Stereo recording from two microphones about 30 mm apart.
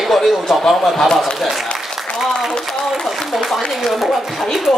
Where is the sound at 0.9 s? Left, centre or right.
Centre.